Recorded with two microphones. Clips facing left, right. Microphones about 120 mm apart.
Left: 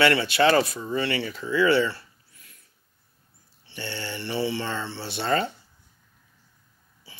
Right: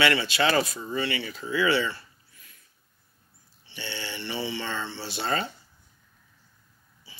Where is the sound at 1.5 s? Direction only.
50° left (ahead or behind).